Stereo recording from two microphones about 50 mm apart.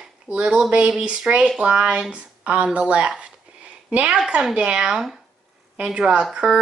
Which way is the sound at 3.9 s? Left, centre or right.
Right.